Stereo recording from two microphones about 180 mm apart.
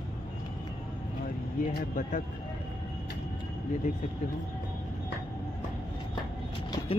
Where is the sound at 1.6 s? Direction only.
50° left (ahead or behind).